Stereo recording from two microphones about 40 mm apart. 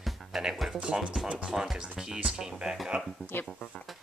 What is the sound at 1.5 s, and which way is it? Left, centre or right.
Speech, centre.